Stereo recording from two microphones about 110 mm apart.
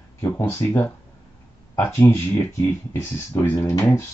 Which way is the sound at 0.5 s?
25° left (ahead or behind).